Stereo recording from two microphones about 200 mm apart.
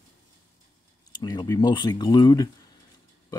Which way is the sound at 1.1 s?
20° left (ahead or behind).